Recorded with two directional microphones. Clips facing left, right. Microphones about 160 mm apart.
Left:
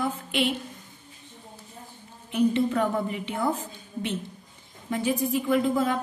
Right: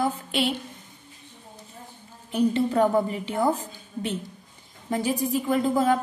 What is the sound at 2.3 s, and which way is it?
A woman's voice, 35° right (ahead or behind).